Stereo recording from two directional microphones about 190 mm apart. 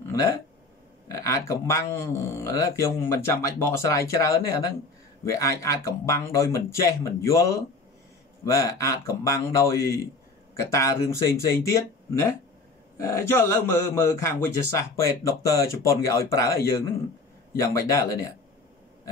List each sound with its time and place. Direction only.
0.1 s a man's voice: 15° left (ahead or behind)